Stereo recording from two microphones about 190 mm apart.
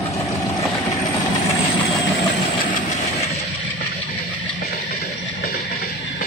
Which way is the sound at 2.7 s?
40° left (ahead or behind).